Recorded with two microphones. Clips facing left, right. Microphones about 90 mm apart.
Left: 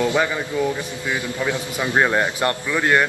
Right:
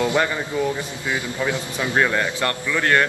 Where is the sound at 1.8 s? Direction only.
20° left (ahead or behind).